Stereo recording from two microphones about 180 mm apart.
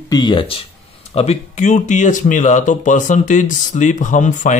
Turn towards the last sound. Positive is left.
turn(degrees=45)  # may be behind; listen again after turning